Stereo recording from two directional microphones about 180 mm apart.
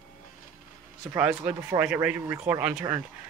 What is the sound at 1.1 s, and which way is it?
Speech, 10° right (ahead or behind).